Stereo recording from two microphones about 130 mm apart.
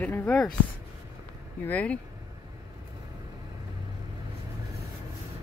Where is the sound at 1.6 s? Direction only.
10° left (ahead or behind).